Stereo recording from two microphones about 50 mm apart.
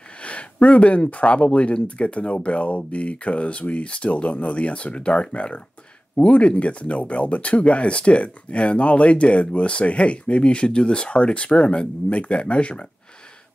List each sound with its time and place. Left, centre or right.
0.2 s speech: left